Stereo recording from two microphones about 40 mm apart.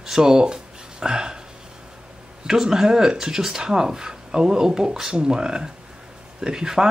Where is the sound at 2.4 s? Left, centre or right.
Centre.